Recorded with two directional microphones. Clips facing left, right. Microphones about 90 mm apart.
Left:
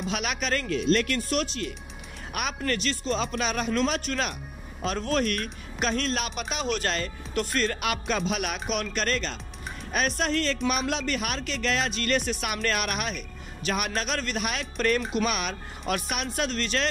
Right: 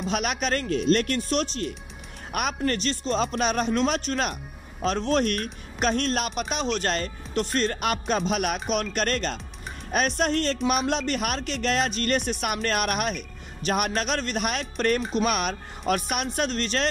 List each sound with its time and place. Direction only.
0.0 s speech: 45° right (ahead or behind)
1.3 s speech: 30° right (ahead or behind)
2.3 s speech: 40° right (ahead or behind)
3.1 s speech: 40° right (ahead or behind)